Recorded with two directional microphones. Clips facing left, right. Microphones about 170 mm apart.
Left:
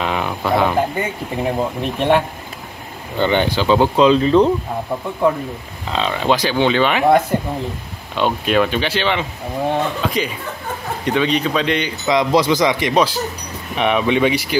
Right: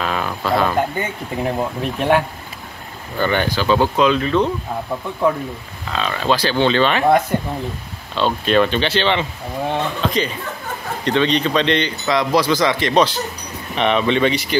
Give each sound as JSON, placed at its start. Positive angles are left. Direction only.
{"t": 0.0, "sound": "a sound", "side_deg": 20}
{"t": 1.3, "sound": "speech", "side_deg": 5}
{"t": 3.2, "sound": "speech", "side_deg": 20}
{"t": 5.9, "sound": "speech", "side_deg": 20}
{"t": 8.2, "sound": "speech", "side_deg": 10}
{"t": 12.1, "sound": "speech", "side_deg": 20}